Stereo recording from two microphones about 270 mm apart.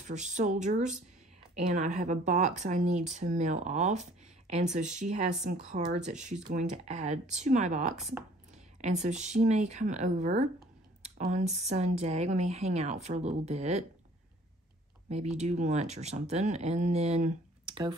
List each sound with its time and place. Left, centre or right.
0.0 s speech: right
15.0 s speech: right